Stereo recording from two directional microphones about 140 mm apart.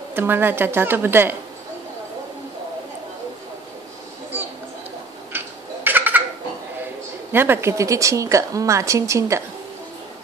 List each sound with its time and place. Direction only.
0.1 s a woman's voice: 15° right (ahead or behind)
5.9 s a sound: 15° right (ahead or behind)
7.3 s a woman's voice: 15° right (ahead or behind)